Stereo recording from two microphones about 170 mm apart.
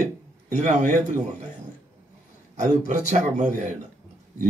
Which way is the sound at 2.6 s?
45° right (ahead or behind).